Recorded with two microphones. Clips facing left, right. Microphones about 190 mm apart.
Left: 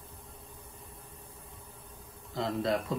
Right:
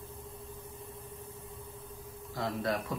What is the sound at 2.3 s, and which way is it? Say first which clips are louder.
Speech: left 3 dB; 25° left (ahead or behind).